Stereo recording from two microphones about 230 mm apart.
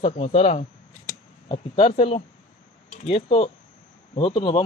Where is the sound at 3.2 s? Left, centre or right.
Left.